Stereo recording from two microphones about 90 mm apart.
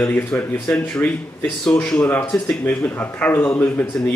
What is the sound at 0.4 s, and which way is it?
Speech, 15° left (ahead or behind).